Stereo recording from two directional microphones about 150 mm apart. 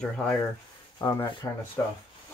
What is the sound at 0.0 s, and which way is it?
Speech, 5° left (ahead or behind).